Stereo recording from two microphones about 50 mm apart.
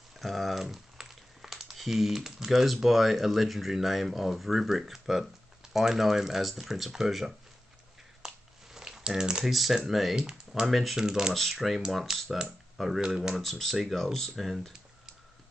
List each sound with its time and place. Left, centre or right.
0.2 s speech: centre
8.7 s crumpling: centre
9.4 s speech: centre
11.3 s speech: centre
13.0 s speech: centre
13.3 s speech: centre